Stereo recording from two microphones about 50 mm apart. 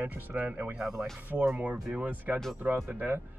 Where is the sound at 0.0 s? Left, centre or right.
Right.